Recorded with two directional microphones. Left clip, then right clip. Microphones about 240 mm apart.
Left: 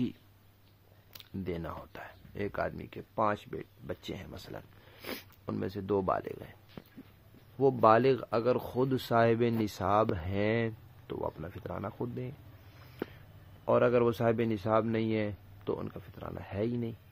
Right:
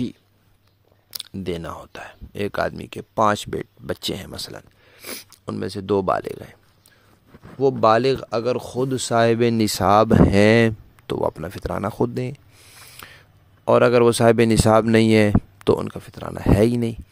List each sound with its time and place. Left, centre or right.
1.1 s speech: right
4.6 s speech: centre
5.4 s speech: right
13.7 s speech: right